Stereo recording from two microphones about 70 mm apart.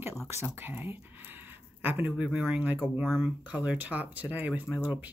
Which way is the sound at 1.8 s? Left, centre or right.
Right.